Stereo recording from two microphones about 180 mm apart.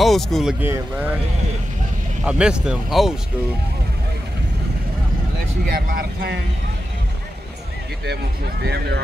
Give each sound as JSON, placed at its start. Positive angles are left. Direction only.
{"t": 0.0, "sound": "speech", "side_deg": 0}
{"t": 2.2, "sound": "speech", "side_deg": -5}
{"t": 5.7, "sound": "speech", "side_deg": -55}